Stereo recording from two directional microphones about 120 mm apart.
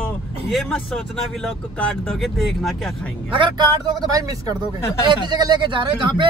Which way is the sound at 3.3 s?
40° right (ahead or behind).